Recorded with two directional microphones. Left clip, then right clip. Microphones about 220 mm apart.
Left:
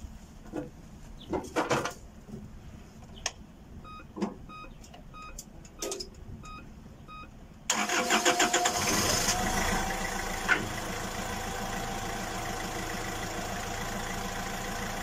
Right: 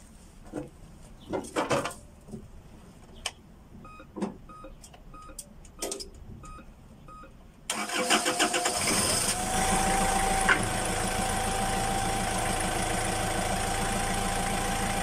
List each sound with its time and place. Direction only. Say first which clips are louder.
1.3 s mechanisms: right 1 dB; centre (ahead or behind)
4.2 s vehicle: even; centre (ahead or behind)
7.6 s vehicle: left 1 dB; centre (ahead or behind)
10.6 s engine: right 6 dB; centre (ahead or behind)